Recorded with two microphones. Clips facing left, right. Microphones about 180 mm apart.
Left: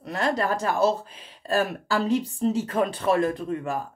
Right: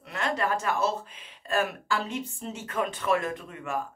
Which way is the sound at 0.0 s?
35° left (ahead or behind).